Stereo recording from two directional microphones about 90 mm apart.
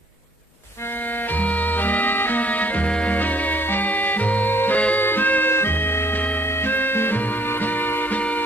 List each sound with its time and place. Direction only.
1.3 s music: 20° left (ahead or behind)